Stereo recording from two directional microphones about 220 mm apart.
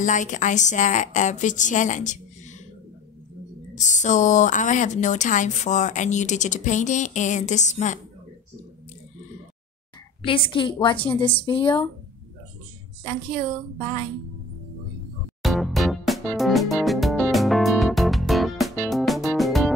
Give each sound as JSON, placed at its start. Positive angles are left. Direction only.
{"t": 0.0, "sound": "a woman's voice", "side_deg": 35}
{"t": 3.7, "sound": "a woman's voice", "side_deg": 35}
{"t": 10.2, "sound": "a woman's voice", "side_deg": 25}
{"t": 13.0, "sound": "a woman's voice", "side_deg": 20}
{"t": 15.4, "sound": "music", "side_deg": 0}